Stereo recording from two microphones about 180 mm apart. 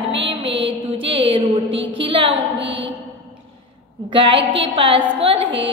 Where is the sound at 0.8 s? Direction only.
30° right (ahead or behind).